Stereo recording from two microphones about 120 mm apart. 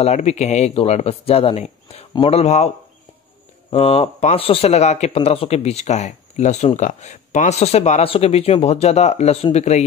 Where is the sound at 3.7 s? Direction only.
55° left (ahead or behind); by 9.8 s 70° left (ahead or behind).